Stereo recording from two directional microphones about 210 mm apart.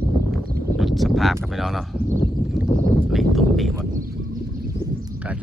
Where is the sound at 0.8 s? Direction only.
Centre (ahead or behind).